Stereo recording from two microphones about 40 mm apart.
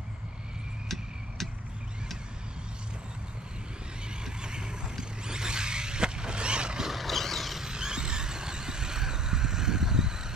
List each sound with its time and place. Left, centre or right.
0.8 s vehicle: centre
4.1 s neigh: right
5.2 s a sound: centre
6.9 s vehicle: centre
7.6 s vehicle: centre